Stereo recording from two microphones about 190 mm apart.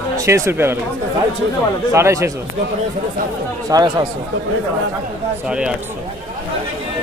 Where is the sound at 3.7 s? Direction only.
20° right (ahead or behind).